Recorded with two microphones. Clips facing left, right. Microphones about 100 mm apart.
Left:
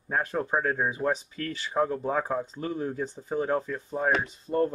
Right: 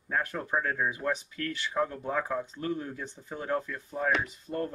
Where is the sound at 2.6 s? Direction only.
20° left (ahead or behind).